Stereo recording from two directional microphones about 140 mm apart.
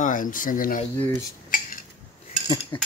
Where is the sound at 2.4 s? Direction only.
35° left (ahead or behind).